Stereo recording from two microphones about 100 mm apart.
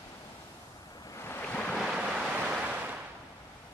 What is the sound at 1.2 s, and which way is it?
Waves, 20° left (ahead or behind).